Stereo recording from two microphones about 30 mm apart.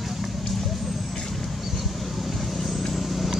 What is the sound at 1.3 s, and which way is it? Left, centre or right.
Vehicle, centre.